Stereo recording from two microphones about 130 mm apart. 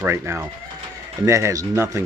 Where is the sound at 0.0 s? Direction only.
15° right (ahead or behind).